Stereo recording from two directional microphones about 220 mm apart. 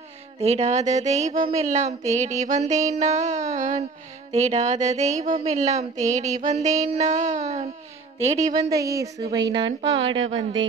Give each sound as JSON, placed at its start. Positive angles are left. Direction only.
{"t": 0.4, "sound": "speech", "side_deg": -30}
{"t": 8.4, "sound": "a woman's voice", "side_deg": -15}